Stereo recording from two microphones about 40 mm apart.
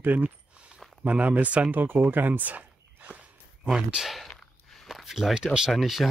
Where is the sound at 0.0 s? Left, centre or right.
Right.